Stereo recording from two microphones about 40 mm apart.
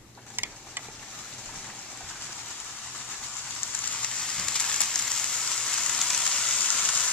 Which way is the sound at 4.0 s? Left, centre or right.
Centre.